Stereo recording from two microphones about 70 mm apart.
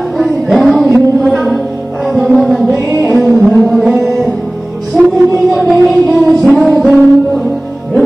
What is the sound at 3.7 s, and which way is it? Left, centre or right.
Music, centre.